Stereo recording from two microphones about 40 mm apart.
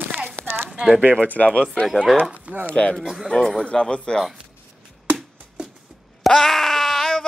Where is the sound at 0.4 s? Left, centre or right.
Right.